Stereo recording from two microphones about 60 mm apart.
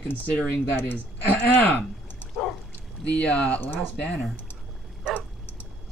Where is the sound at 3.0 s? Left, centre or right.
Left.